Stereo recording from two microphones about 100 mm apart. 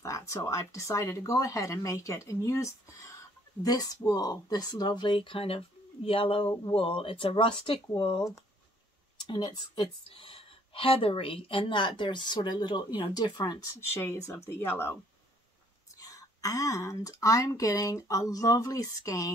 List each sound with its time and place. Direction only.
0.0 s speech: 35° left (ahead or behind); by 8.2 s 60° left (ahead or behind)
9.2 s speech: 50° left (ahead or behind)
10.0 s speech: 65° left (ahead or behind); by 13.6 s 45° left (ahead or behind)
13.7 s speech: 25° left (ahead or behind)
16.0 s speech: 35° left (ahead or behind)